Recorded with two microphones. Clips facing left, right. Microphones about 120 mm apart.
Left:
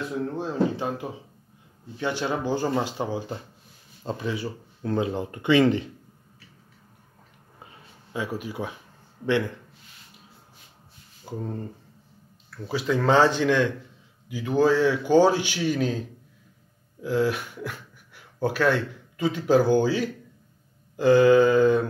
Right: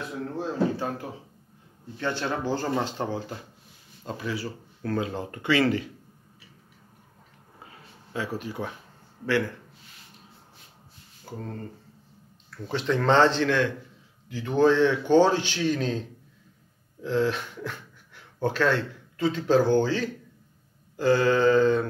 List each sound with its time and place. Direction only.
0.7 s a man's voice: 15° left (ahead or behind)
4.0 s speech: 25° left (ahead or behind)
8.1 s a man's voice: 15° left (ahead or behind)
11.2 s a man's voice: 15° left (ahead or behind)
12.4 s a man's voice: 5° left (ahead or behind)